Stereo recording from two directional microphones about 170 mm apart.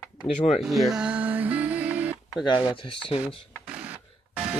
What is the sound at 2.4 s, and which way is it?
Speech, 30° left (ahead or behind).